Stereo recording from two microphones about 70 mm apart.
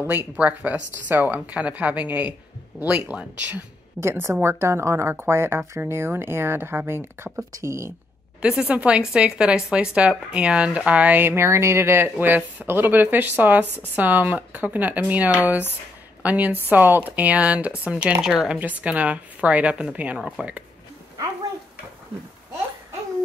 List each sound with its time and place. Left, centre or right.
0.1 s speech: right
4.0 s speech: right
7.5 s speech: right
8.4 s speech: centre
11.2 s speech: right; by 18.1 s centre
18.2 s speech: centre
18.5 s speech: right